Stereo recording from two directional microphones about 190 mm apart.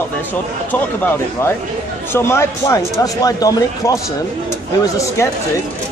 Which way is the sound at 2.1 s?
15° left (ahead or behind).